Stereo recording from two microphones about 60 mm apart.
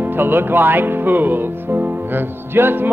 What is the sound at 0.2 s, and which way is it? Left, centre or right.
Music, right.